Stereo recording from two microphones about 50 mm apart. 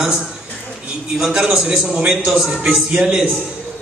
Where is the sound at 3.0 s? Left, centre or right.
Centre.